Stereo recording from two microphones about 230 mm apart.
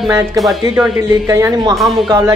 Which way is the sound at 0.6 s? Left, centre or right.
Centre.